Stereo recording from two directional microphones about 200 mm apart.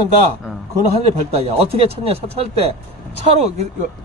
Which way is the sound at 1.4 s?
30° right (ahead or behind).